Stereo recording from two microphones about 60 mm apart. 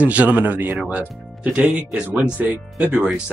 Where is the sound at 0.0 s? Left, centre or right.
Right.